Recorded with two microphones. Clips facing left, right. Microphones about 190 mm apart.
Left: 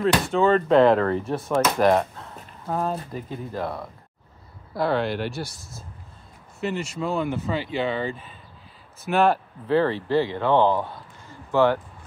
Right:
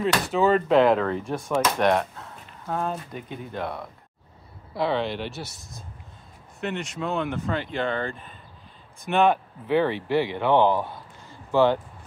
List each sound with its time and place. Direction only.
0.0 s speech: 5° right (ahead or behind)
6.6 s speech: centre (ahead or behind)
10.0 s speech: 15° right (ahead or behind)